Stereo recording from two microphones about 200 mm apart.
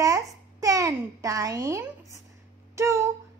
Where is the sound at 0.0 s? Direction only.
15° right (ahead or behind).